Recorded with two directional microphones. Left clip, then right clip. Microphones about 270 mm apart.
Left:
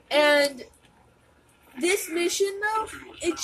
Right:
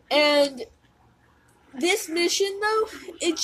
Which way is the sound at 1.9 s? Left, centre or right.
Right.